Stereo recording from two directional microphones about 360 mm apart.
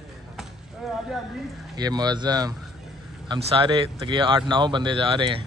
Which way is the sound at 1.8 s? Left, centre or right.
Centre.